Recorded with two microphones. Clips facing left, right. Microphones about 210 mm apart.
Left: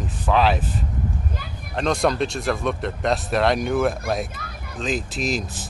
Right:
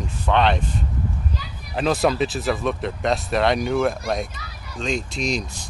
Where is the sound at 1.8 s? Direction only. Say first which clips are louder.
Right 1 dB; 5° right (ahead or behind).